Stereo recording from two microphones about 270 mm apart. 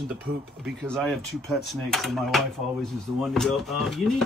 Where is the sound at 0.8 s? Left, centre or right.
Centre.